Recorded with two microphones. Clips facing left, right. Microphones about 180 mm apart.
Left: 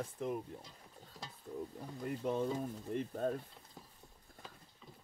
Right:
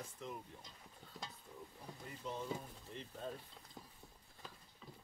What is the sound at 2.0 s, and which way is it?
Speech, 60° left (ahead or behind).